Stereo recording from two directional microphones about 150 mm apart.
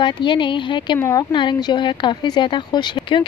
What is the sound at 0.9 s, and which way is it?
Speech, 20° left (ahead or behind).